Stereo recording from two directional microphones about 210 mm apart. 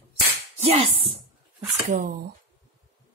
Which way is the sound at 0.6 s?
25° right (ahead or behind).